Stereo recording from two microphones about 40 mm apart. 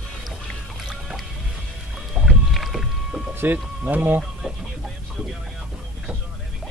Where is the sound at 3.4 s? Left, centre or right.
Right.